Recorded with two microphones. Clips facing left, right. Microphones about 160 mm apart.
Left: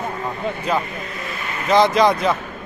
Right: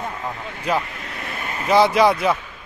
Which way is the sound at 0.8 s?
65° right (ahead or behind).